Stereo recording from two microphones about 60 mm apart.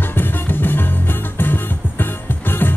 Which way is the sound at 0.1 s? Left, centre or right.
Left.